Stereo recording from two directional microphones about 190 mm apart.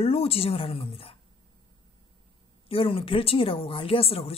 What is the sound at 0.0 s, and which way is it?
A woman's voice, 30° left (ahead or behind).